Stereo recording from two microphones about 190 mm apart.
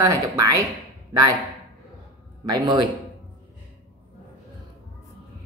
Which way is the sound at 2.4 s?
20° right (ahead or behind).